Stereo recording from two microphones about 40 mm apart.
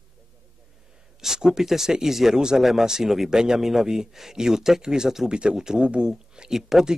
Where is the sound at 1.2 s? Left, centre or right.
Centre.